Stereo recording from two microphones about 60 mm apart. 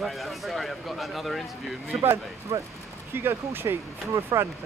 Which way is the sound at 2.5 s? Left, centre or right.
Right.